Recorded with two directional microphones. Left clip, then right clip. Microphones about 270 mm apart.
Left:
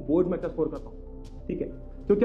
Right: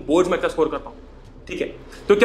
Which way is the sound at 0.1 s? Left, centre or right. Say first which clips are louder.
Right 7 dB; centre.